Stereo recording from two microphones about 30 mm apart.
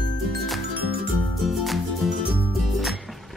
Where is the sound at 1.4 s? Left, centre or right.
Centre.